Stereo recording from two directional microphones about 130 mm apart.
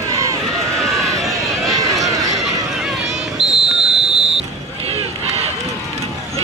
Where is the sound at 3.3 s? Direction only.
5° right (ahead or behind).